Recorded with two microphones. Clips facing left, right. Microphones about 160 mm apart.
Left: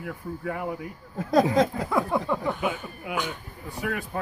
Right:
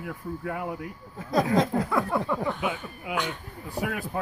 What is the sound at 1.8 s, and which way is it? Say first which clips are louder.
Speech: left 1 dB; 15° left (ahead or behind).